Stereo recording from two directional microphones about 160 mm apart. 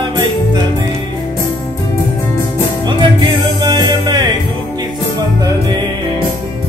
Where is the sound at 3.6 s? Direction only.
25° right (ahead or behind).